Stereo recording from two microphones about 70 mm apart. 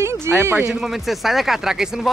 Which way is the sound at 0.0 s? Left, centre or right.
Right.